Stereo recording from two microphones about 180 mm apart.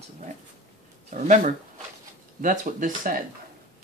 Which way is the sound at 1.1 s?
40° right (ahead or behind).